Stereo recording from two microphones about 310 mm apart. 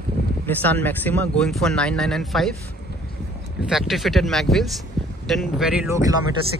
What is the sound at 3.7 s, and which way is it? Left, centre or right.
Speech, centre.